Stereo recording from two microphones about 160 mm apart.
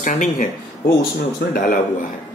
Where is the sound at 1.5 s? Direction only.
60° left (ahead or behind).